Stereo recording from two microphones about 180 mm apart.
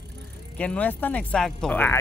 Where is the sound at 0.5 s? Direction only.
10° left (ahead or behind).